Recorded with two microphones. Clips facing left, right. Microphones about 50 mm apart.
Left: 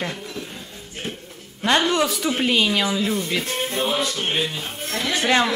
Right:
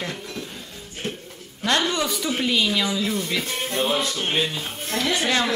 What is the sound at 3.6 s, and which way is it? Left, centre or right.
Music, centre.